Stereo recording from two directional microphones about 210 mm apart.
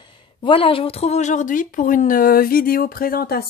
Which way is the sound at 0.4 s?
25° left (ahead or behind).